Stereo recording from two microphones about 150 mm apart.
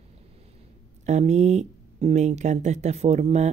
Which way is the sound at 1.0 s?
50° right (ahead or behind).